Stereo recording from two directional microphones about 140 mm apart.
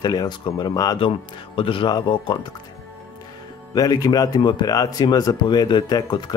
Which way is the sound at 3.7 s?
25° left (ahead or behind).